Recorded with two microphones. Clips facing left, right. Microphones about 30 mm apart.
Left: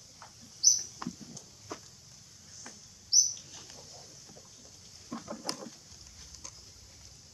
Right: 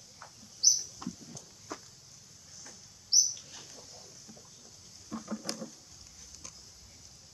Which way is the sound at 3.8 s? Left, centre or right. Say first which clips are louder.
Even; centre.